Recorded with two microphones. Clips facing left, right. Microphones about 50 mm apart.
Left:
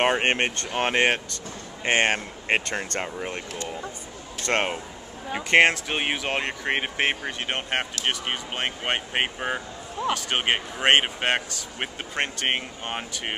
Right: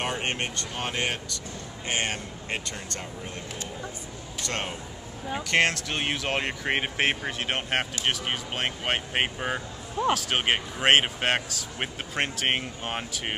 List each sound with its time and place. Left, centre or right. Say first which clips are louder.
0.0 s speech: left 8 dB; left
5.3 s speech: left 5 dB; left
6.2 s speech: left 1 dB; centre